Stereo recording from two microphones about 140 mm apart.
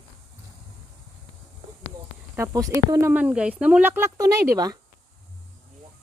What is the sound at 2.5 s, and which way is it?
Speech, 25° right (ahead or behind).